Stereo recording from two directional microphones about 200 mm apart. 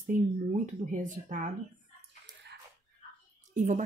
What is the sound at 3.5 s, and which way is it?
Speech, 35° right (ahead or behind).